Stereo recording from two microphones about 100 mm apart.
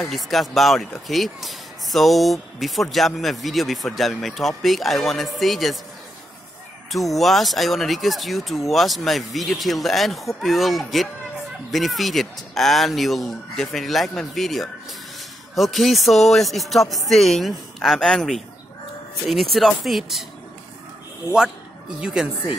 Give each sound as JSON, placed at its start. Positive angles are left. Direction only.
{"t": 0.0, "sound": "speech", "side_deg": 0}
{"t": 6.9, "sound": "speech", "side_deg": 0}
{"t": 22.0, "sound": "speech", "side_deg": -5}